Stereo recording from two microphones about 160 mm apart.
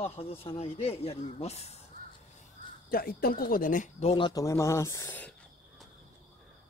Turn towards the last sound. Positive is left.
turn(degrees=10)  # may be behind; listen again after turning